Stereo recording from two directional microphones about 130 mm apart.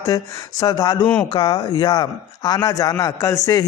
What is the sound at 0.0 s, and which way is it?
Speech, 30° left (ahead or behind).